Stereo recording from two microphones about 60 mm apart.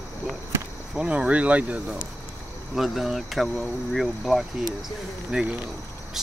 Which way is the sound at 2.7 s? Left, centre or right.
Centre.